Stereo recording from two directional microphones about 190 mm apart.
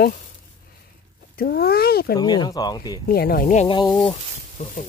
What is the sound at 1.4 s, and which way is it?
Speech, 55° left (ahead or behind).